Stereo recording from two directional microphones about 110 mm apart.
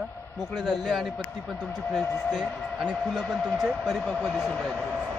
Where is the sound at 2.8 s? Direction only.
5° right (ahead or behind).